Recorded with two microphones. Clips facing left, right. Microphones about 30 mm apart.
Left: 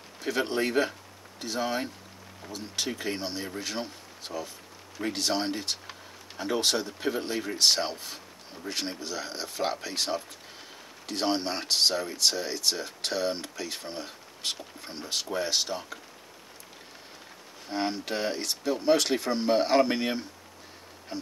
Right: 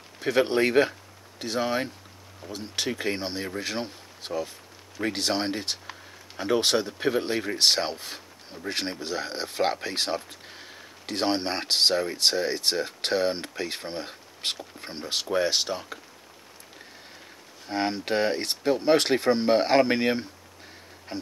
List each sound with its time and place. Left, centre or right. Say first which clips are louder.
0.2 s speech: right 5 dB; right
17.6 s speech: right 3 dB; right